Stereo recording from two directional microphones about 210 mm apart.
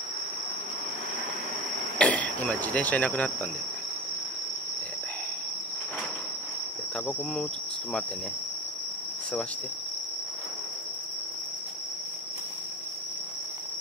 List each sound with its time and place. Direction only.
2.0 s cricket: 5° left (ahead or behind)